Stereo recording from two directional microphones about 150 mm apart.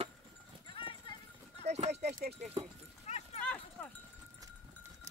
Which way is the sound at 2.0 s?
90° right.